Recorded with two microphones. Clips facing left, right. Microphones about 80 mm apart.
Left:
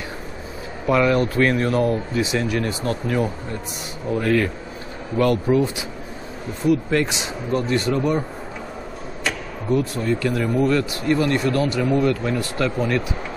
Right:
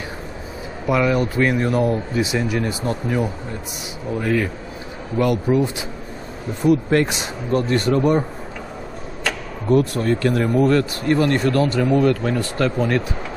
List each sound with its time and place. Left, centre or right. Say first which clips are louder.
0.8 s speech: left 1 dB; centre
4.2 s speech: left 1 dB; centre
6.7 s speech: right 2 dB; right
8.0 s speech: right 4 dB; centre
9.2 s speech: right 1 dB; right